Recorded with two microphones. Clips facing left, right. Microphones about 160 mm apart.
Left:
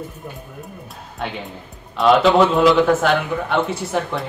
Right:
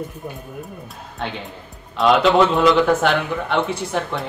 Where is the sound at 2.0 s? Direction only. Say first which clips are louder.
Left 1 dB; centre (ahead or behind).